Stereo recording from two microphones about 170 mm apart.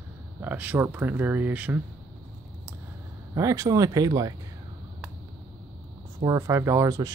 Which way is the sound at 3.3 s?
20° right (ahead or behind).